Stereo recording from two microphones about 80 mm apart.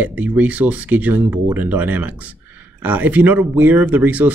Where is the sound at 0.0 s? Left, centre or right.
Right.